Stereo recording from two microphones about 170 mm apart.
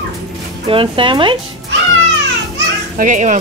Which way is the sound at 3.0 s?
45° right (ahead or behind).